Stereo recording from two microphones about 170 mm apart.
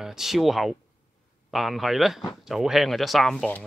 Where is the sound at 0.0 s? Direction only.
Centre (ahead or behind).